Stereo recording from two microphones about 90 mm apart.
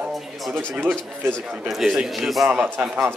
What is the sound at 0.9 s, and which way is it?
Speech, 20° right (ahead or behind).